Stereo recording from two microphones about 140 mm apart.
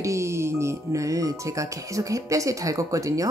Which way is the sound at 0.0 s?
20° right (ahead or behind).